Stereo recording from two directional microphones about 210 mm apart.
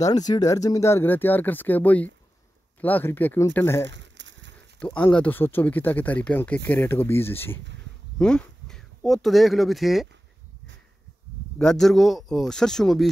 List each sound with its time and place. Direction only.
0.0 s speech: 20° left (ahead or behind)
3.9 s a sound: 60° right (ahead or behind)
4.7 s speech: 5° left (ahead or behind)
11.5 s speech: 5° left (ahead or behind)